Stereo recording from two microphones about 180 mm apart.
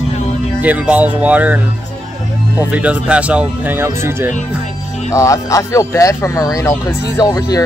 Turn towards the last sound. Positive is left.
turn(degrees=20)  # may be behind; listen again after turning